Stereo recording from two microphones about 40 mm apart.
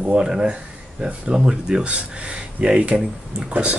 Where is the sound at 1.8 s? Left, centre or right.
Right.